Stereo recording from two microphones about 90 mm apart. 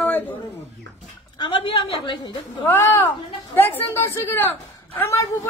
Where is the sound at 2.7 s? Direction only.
25° left (ahead or behind).